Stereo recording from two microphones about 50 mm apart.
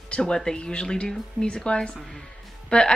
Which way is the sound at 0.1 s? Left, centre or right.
Centre.